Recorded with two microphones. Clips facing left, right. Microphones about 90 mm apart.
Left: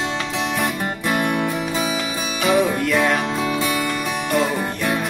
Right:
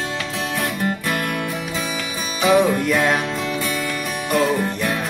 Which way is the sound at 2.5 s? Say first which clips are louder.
Right 2 dB; 20° right (ahead or behind).